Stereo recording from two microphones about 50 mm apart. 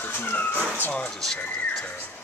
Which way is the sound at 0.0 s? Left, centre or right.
Left.